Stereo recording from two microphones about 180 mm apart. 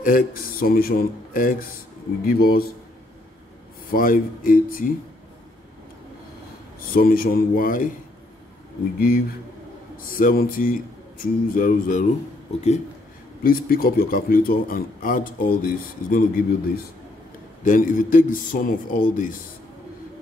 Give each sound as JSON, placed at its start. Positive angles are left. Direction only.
{"t": 0.0, "sound": "speech", "side_deg": 50}
{"t": 3.9, "sound": "speech", "side_deg": 50}
{"t": 6.9, "sound": "speech", "side_deg": 55}
{"t": 9.9, "sound": "speech", "side_deg": 50}
{"t": 12.5, "sound": "speech", "side_deg": 40}
{"t": 13.4, "sound": "speech", "side_deg": 55}